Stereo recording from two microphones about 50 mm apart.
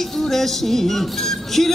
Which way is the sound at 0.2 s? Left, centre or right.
Centre.